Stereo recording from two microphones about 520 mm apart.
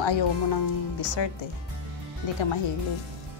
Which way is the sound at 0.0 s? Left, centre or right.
Left.